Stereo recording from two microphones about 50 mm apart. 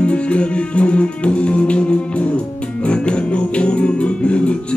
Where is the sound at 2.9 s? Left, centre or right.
Left.